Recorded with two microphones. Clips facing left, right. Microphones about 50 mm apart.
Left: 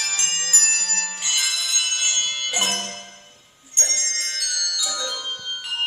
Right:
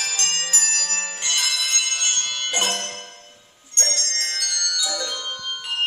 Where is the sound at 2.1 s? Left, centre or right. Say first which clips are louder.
Even; centre.